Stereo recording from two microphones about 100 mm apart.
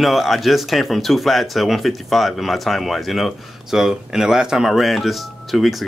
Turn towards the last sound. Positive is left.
turn(degrees=0)  # may be behind; listen again after turning